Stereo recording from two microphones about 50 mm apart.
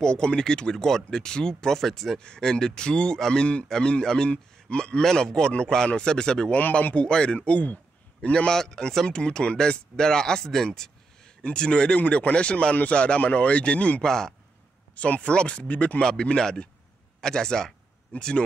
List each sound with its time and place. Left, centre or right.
0.0 s speech: centre
2.1 s a man's voice: centre
6.5 s speech: left
7.1 s speech: centre
7.3 s speech: left
8.2 s speech: left
12.0 s speech: left
14.0 s speech: centre
15.0 s speech: left